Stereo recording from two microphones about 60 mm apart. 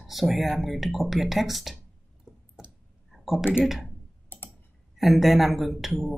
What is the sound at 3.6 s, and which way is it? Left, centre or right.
Speech, centre.